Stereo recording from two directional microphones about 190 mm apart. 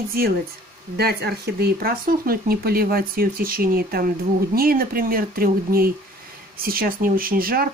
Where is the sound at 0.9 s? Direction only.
60° right (ahead or behind).